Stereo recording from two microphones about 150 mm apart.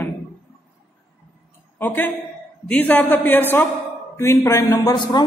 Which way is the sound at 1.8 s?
10° left (ahead or behind).